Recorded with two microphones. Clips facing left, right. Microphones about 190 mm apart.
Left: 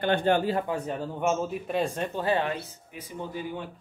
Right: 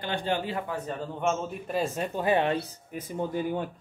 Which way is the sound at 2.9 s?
45° right (ahead or behind).